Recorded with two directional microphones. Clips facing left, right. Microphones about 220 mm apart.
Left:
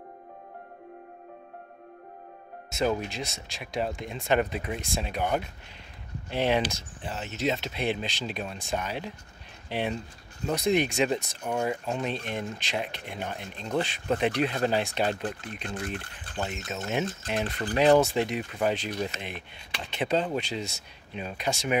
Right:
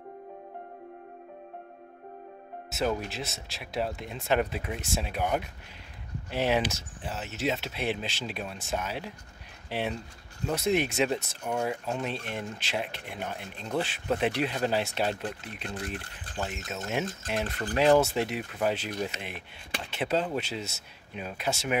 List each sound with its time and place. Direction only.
2.7 s speech: 5° right (ahead or behind)
16.7 s speech: centre (ahead or behind)